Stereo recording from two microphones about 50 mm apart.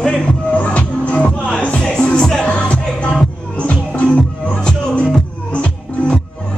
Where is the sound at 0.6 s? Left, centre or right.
Left.